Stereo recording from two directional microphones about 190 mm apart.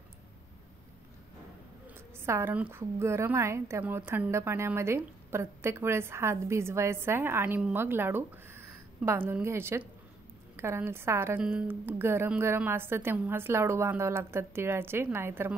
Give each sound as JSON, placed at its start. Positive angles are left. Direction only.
{"t": 2.1, "sound": "a woman's voice", "side_deg": -15}